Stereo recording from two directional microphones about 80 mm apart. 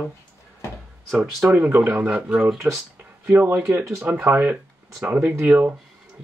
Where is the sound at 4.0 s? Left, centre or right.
Right.